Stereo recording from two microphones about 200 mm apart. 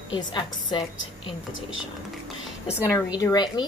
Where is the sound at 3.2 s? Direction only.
20° left (ahead or behind).